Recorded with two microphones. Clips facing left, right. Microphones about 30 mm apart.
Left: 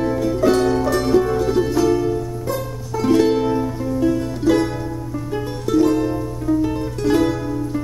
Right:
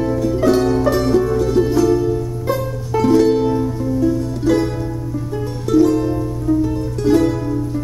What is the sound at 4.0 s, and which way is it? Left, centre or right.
Music, left.